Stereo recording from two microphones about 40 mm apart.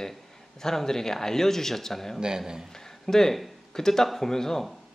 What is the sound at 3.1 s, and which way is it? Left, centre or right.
A man's voice, centre.